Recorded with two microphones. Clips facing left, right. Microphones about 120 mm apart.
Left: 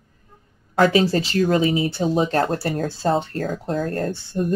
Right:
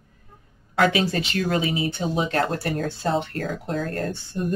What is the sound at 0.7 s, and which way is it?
Speech, 35° left (ahead or behind).